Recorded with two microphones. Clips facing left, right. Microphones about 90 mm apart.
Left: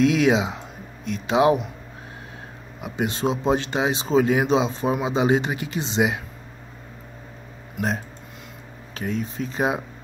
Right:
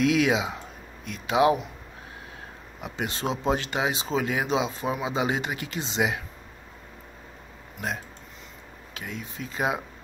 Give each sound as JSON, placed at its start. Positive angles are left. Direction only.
{"t": 0.0, "sound": "speech", "side_deg": 25}
{"t": 2.8, "sound": "speech", "side_deg": 20}
{"t": 8.9, "sound": "speech", "side_deg": 35}